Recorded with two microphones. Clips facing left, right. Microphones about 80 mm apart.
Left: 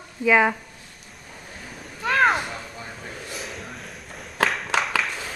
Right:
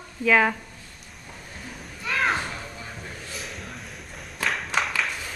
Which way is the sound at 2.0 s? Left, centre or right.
Left.